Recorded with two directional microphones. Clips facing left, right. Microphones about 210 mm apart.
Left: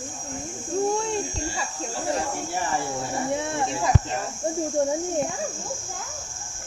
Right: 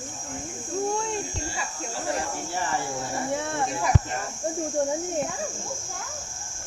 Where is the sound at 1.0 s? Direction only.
35° left (ahead or behind).